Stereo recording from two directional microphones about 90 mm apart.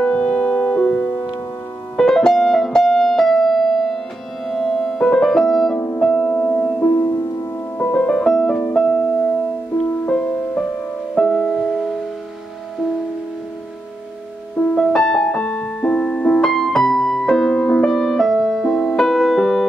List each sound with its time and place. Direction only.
0.0 s music: 10° left (ahead or behind)
4.5 s piano: 5° left (ahead or behind)
5.9 s music: 10° left (ahead or behind)
14.7 s music: 10° left (ahead or behind)